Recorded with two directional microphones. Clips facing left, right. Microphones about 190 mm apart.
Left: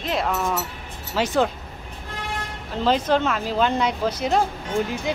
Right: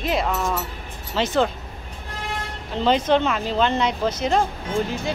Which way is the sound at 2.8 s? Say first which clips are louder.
Right 1 dB; centre (ahead or behind).